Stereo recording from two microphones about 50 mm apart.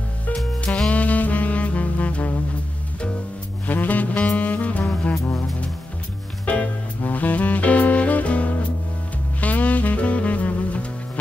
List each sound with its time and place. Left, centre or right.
0.8 s saxophone: left
3.6 s saxophone: left
6.4 s music: left
9.4 s saxophone: left